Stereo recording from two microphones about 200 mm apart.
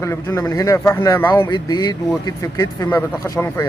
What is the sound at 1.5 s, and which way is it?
A man's voice, 20° left (ahead or behind).